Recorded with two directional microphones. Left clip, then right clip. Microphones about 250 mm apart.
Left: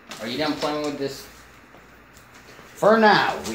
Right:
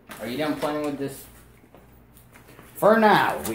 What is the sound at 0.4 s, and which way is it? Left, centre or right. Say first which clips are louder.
Speech: left 1 dB; centre.